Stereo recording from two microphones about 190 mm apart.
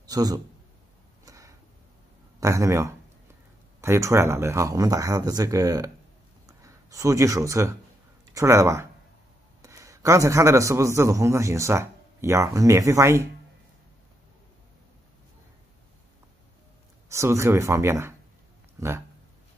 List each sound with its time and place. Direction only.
0.0 s a man's voice: 20° right (ahead or behind)
1.2 s a sound: 15° right (ahead or behind)
2.4 s a man's voice: 15° right (ahead or behind)
17.1 s speech: 15° right (ahead or behind)